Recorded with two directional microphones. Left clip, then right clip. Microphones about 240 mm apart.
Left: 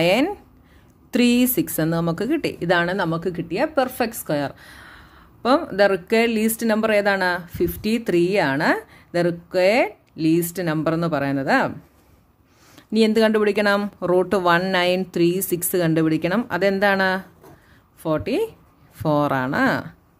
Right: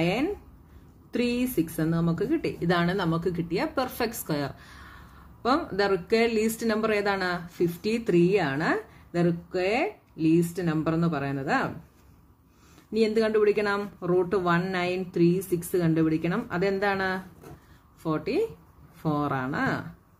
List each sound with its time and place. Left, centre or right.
0.0 s speech: left
12.9 s speech: left